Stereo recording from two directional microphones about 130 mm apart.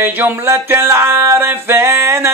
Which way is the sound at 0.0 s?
15° right (ahead or behind).